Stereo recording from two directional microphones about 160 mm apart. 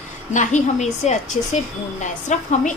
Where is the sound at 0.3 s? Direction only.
50° left (ahead or behind).